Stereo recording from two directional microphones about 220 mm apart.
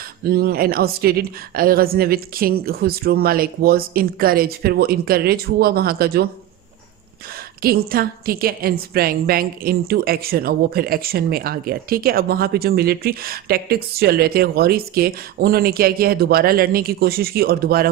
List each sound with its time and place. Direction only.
0.3 s a woman's voice: 45° right (ahead or behind)
7.6 s a woman's voice: 45° right (ahead or behind)